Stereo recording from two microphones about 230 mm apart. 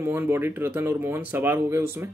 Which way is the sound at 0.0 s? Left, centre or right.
Centre.